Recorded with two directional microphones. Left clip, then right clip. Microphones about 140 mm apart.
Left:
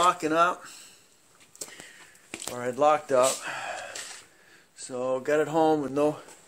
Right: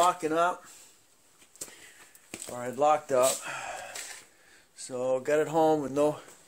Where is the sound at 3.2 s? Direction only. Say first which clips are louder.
Left 2 dB; 25° left (ahead or behind).